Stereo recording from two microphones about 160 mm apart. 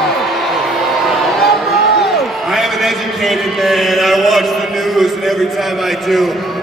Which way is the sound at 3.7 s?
Centre (ahead or behind).